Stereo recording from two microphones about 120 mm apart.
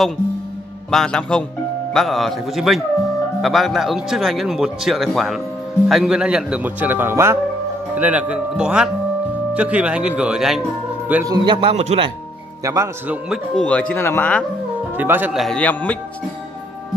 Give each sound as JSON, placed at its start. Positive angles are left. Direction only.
{"t": 0.8, "sound": "a man's voice", "side_deg": 5}
{"t": 11.2, "sound": "a man's voice", "side_deg": -35}
{"t": 11.7, "sound": "speech", "side_deg": -70}
{"t": 12.6, "sound": "speech", "side_deg": -30}
{"t": 13.6, "sound": "speech", "side_deg": 10}
{"t": 15.0, "sound": "speech", "side_deg": -15}
{"t": 15.3, "sound": "a man's voice", "side_deg": 0}
{"t": 15.6, "sound": "speech", "side_deg": 10}